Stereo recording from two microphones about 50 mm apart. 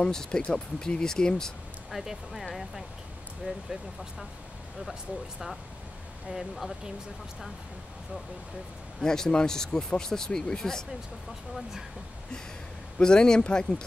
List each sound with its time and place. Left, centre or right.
0.0 s speech: centre
1.9 s speech: centre
3.5 s speech: right
6.2 s speech: centre
9.0 s speech: centre
13.0 s speech: centre